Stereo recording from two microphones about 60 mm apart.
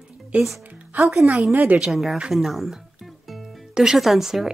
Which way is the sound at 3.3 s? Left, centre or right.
Centre.